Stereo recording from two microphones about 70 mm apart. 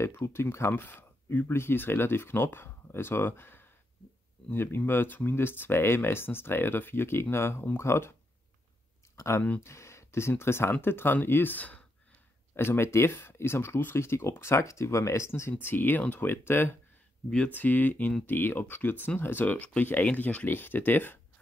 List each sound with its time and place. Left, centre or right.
0.0 s speech: left
9.1 s speech: left
12.5 s speech: left
15.6 s speech: left